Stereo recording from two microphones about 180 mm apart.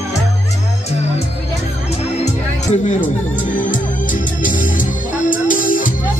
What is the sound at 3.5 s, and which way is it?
Music, 45° left (ahead or behind).